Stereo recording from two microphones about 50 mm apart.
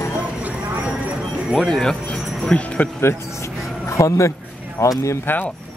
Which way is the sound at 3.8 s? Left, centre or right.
Left.